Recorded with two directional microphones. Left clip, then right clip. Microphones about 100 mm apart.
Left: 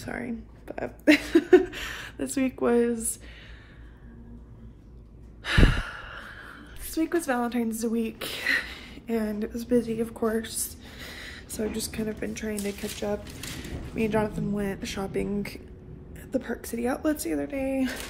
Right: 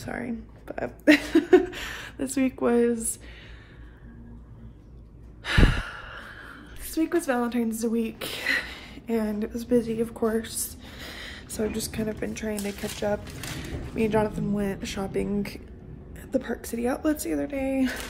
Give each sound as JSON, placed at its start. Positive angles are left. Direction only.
{"t": 0.0, "sound": "speech", "side_deg": -30}
{"t": 1.3, "sound": "a sound", "side_deg": -45}
{"t": 1.6, "sound": "speech", "side_deg": -30}
{"t": 5.4, "sound": "sigh", "side_deg": -20}
{"t": 6.9, "sound": "speech", "side_deg": -20}
{"t": 10.4, "sound": "a woman's voice", "side_deg": -30}
{"t": 16.2, "sound": "whispering", "side_deg": -35}
{"t": 16.6, "sound": "a woman's voice", "side_deg": -10}